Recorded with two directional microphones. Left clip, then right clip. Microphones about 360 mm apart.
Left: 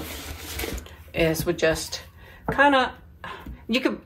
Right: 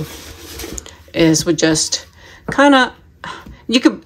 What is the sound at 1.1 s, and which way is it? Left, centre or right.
Speech, right.